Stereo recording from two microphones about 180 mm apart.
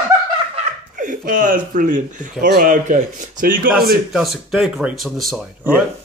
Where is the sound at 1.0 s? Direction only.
50° right (ahead or behind).